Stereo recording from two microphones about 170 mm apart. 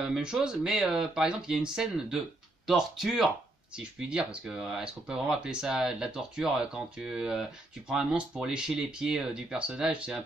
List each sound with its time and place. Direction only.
0.0 s speech: 5° right (ahead or behind)